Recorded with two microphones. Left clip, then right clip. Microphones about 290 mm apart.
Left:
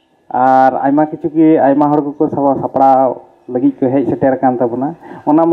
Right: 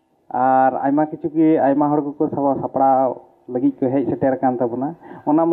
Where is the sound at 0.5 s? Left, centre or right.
Centre.